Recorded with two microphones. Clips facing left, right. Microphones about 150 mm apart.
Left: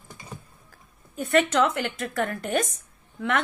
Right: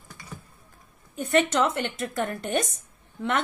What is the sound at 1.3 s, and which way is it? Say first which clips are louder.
A woman's voice: left 1 dB; 30° right (ahead or behind).